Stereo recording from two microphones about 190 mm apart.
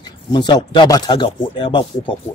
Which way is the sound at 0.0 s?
20° left (ahead or behind).